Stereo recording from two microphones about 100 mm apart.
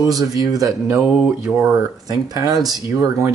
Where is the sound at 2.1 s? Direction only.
40° right (ahead or behind).